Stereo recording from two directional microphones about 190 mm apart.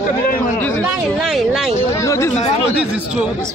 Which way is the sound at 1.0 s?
Centre (ahead or behind).